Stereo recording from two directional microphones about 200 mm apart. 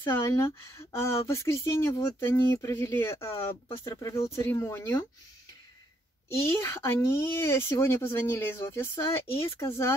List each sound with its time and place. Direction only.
0.0 s speech: 15° left (ahead or behind)
6.2 s speech: 15° left (ahead or behind)